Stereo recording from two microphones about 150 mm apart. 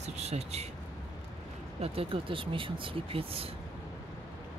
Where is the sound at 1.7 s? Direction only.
40° right (ahead or behind).